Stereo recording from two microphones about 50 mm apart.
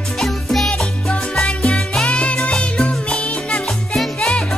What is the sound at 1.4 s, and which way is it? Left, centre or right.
Music, left.